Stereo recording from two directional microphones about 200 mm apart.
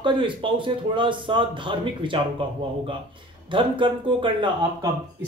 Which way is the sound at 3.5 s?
25° right (ahead or behind).